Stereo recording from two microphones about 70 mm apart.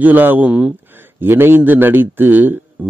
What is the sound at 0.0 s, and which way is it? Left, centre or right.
Speech, right.